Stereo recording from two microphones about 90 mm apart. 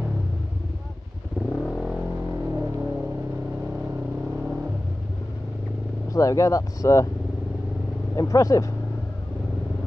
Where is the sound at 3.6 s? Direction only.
10° right (ahead or behind).